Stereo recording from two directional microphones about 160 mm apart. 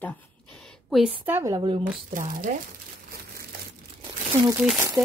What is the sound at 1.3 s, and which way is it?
Speech, 15° right (ahead or behind).